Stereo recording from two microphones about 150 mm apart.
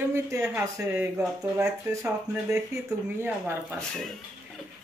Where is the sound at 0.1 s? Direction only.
20° right (ahead or behind).